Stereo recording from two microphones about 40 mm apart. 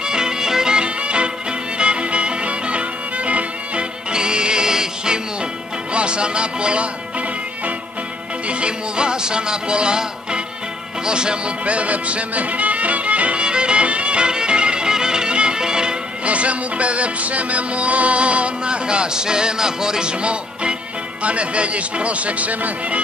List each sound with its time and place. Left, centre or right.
0.0 s music: centre; by 3.8 s right
4.1 s music: right
5.9 s speech: right
8.5 s music: right
11.6 s music: right
16.3 s music: right
21.2 s speech: right